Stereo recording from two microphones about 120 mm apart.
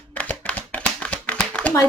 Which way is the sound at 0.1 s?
15° left (ahead or behind).